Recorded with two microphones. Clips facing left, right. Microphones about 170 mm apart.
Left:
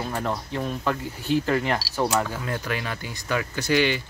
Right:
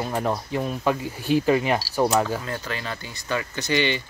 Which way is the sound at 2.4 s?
10° left (ahead or behind).